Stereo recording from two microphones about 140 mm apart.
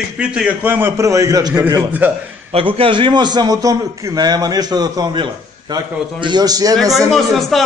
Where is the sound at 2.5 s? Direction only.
40° right (ahead or behind).